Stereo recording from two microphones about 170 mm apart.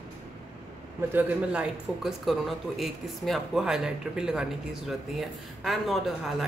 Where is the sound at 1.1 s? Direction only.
10° right (ahead or behind).